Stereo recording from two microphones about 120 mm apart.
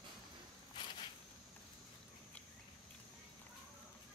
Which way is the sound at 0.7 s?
45° left (ahead or behind).